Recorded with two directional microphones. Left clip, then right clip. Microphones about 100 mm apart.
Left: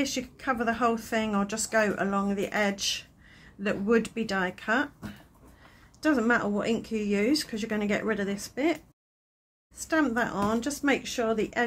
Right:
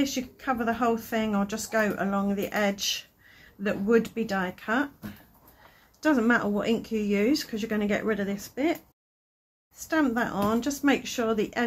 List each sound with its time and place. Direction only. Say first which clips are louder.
0.0 s speech: right 1 dB; 25° left (ahead or behind)
3.6 s speech: right 2 dB; 35° left (ahead or behind)
5.9 s speech: right 1 dB; 15° left (ahead or behind)
9.8 s speech: even; 25° left (ahead or behind)